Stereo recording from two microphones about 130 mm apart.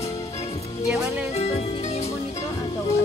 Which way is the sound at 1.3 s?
55° left (ahead or behind).